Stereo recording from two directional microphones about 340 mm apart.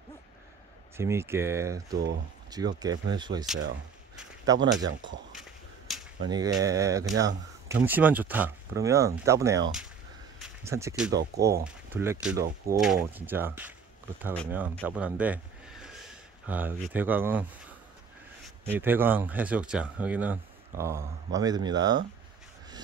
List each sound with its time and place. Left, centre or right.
0.9 s speech: centre
5.3 s a sound: centre
6.3 s speech: centre
11.1 s speech: right
11.6 s speech: centre
18.7 s speech: centre